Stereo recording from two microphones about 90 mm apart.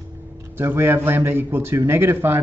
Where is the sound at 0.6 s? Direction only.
25° right (ahead or behind).